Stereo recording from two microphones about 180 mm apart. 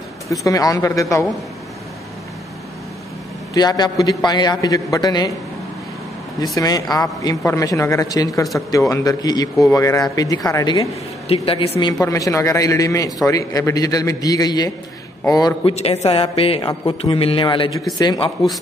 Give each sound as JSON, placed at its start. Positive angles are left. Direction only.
{"t": 0.3, "sound": "a man's voice", "side_deg": 20}
{"t": 3.5, "sound": "a man's voice", "side_deg": 25}
{"t": 6.4, "sound": "a man's voice", "side_deg": 20}
{"t": 11.8, "sound": "a man's voice", "side_deg": 20}
{"t": 15.7, "sound": "a man's voice", "side_deg": 35}